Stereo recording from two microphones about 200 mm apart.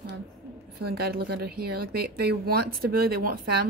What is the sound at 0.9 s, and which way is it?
Speech, 50° right (ahead or behind).